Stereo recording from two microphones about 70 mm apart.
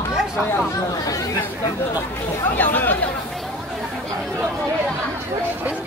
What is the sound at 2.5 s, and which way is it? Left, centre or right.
Chatter, left.